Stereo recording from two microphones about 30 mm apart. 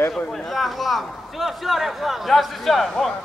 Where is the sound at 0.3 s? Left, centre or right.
Centre.